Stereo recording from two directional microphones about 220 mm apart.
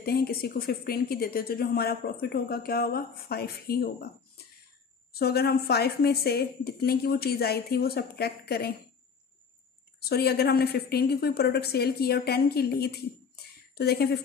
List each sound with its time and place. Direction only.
0.0 s speech: 45° left (ahead or behind)
5.1 s speech: 45° left (ahead or behind)
9.9 s speech: 45° left (ahead or behind)